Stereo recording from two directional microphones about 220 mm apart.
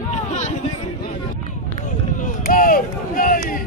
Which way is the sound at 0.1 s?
30° left (ahead or behind).